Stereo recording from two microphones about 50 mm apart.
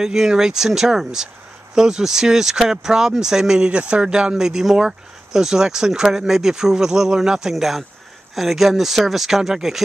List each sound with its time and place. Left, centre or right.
0.0 s speech: centre
3.6 s speech: right